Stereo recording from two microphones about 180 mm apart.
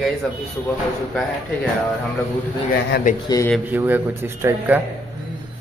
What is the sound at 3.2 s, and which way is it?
Speech, 15° left (ahead or behind).